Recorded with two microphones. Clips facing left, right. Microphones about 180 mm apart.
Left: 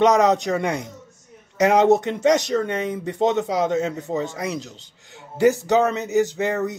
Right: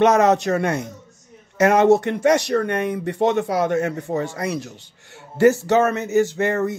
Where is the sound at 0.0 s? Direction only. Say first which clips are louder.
Right 1 dB; 15° left (ahead or behind).